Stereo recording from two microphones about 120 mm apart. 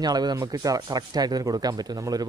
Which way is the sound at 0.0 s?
35° right (ahead or behind).